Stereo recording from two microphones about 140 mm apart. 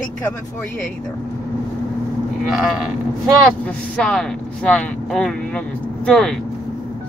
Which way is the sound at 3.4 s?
5° left (ahead or behind).